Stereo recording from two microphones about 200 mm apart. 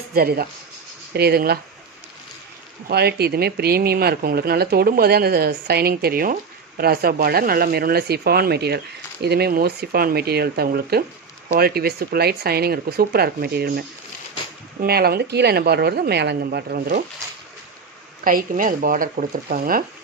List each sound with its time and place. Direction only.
0.1 s speech: 50° right (ahead or behind)
2.9 s speech: 55° right (ahead or behind)
18.2 s speech: 45° right (ahead or behind)